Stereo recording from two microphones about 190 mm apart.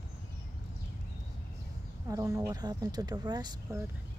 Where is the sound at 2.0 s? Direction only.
15° right (ahead or behind).